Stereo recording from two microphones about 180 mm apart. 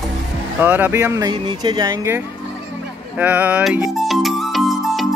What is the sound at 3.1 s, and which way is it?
Music, 10° right (ahead or behind).